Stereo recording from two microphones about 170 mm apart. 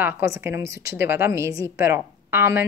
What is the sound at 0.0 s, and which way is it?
Speech, 15° right (ahead or behind).